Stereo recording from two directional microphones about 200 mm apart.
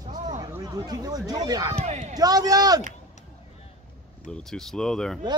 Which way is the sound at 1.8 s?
35° right (ahead or behind).